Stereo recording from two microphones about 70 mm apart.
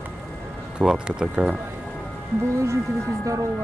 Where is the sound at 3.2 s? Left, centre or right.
Right.